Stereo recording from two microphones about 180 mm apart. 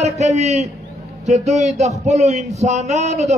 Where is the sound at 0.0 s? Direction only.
40° right (ahead or behind).